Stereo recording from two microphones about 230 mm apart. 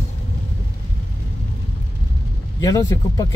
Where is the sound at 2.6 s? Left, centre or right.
Centre.